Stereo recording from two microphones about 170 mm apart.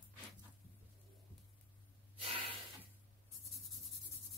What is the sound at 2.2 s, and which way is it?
Gasp, 35° right (ahead or behind).